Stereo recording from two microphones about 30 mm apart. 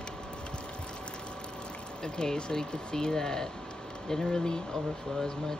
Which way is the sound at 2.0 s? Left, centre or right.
Left.